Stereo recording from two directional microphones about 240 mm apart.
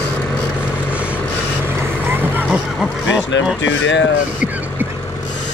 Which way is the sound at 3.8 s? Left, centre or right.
Left.